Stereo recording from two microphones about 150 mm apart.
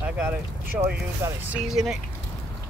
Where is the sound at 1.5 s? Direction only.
Centre (ahead or behind).